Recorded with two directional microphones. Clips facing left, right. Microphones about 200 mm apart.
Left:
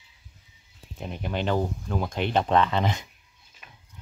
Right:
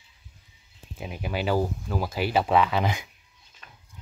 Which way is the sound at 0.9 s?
5° right (ahead or behind).